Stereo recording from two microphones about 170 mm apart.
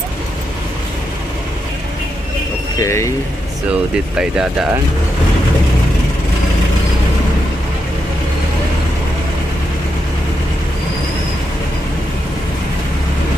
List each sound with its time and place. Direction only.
2.8 s speech: 20° left (ahead or behind)